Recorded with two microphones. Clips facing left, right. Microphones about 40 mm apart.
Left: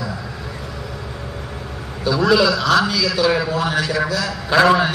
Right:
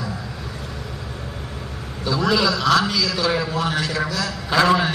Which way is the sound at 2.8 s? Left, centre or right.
Left.